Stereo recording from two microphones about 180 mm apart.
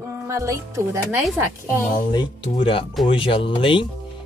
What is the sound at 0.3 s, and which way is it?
Speech, 15° right (ahead or behind).